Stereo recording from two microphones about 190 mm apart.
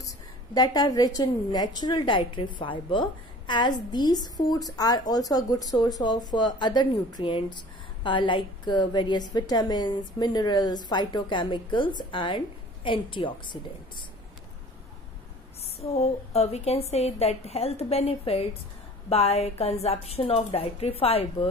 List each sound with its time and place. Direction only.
0.6 s a woman's voice: 20° left (ahead or behind)
15.6 s a woman's voice: 35° left (ahead or behind)